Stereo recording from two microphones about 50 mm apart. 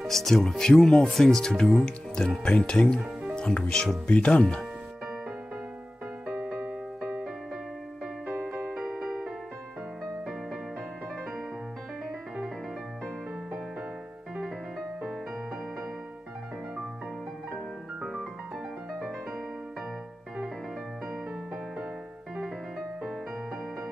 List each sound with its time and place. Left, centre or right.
0.0 s speech: centre; by 4.4 s left
4.4 s speech: centre
6.2 s music: centre
8.3 s music: centre
14.3 s music: centre
18.9 s music: centre
22.3 s music: centre